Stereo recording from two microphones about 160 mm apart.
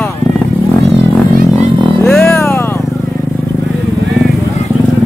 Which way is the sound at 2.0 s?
5° left (ahead or behind).